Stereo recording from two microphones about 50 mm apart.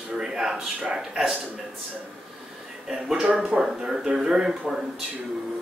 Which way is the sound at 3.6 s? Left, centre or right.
Centre.